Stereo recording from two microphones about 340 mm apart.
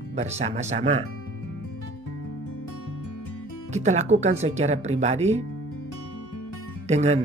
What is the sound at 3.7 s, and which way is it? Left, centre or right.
Speech, centre.